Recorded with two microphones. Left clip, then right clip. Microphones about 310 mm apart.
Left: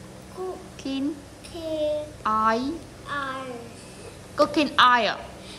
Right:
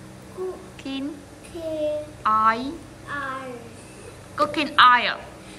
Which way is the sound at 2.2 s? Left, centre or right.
Centre.